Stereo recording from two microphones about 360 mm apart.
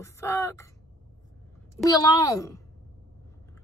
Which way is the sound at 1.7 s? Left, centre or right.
Centre.